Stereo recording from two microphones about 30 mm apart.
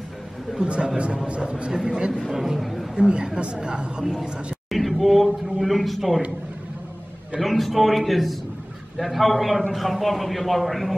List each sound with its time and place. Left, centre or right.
0.7 s speech: right
1.7 s speech: centre
2.3 s a man's voice: centre
3.0 s speech: right
4.0 s speech: centre
4.6 s a sound: centre
7.3 s a man's voice: centre